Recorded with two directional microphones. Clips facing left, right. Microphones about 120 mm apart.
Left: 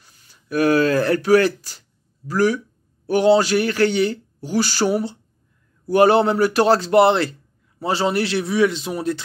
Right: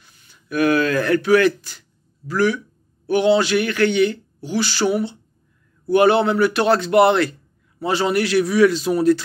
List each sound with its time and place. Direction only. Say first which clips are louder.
0.0 s a man's voice: right 1 dB; 35° left (ahead or behind); by 9.2 s 20° left (ahead or behind)